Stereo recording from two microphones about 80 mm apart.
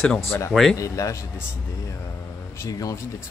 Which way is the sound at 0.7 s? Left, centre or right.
Left.